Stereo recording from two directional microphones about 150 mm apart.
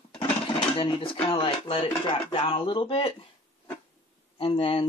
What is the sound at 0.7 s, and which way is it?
Speech, 30° left (ahead or behind).